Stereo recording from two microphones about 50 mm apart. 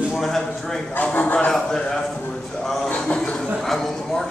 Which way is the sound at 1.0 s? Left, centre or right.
Left.